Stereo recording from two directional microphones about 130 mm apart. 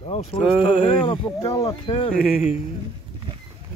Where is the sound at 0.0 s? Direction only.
45° left (ahead or behind).